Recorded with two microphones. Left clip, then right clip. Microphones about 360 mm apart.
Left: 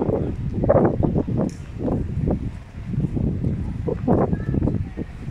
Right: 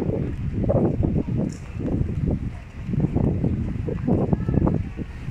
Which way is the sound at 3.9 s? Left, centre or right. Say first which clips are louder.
Left 6 dB; left.